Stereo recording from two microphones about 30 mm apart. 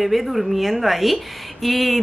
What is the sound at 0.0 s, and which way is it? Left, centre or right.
A woman's voice, centre.